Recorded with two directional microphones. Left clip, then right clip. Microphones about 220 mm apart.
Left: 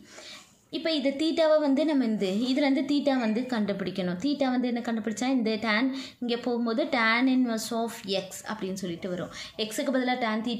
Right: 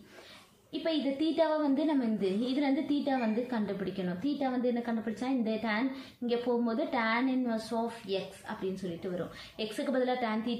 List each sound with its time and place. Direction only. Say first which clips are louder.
0.8 s a woman's voice: left 4 dB; 45° left (ahead or behind)
9.6 s a woman's voice: left 3 dB; 40° left (ahead or behind)